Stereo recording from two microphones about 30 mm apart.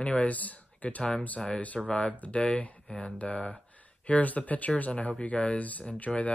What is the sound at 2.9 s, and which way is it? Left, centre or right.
Speech, left.